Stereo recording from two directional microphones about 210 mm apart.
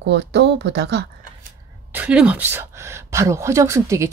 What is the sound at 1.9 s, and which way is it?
Speech, 5° right (ahead or behind).